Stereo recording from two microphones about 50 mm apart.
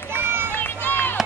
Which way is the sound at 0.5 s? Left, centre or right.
Left.